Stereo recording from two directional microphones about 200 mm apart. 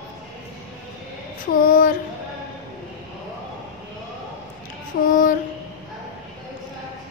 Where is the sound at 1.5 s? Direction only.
45° left (ahead or behind).